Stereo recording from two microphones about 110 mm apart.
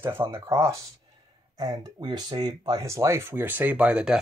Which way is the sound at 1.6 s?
40° right (ahead or behind).